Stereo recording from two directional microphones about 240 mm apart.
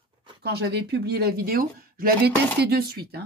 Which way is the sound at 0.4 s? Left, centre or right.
Right.